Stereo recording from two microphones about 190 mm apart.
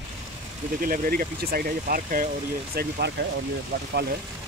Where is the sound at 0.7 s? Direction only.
45° right (ahead or behind).